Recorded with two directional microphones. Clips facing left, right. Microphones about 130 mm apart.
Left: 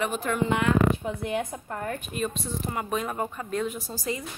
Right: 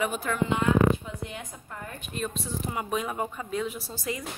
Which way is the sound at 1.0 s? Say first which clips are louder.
Left 9 dB; 55° left (ahead or behind).